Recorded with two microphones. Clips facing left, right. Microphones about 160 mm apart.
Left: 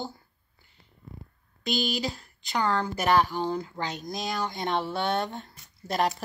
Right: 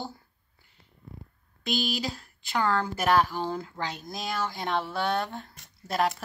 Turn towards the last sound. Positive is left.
turn(degrees=0)  # may be behind; listen again after turning